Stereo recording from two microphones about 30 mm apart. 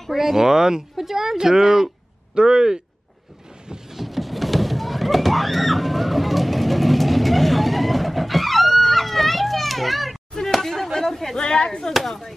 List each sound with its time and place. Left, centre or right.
0.1 s speech: centre
0.4 s speech: centre
2.3 s speech: right
3.9 s a sound: centre
10.4 s chop: centre
11.3 s speech: left
11.9 s speech: centre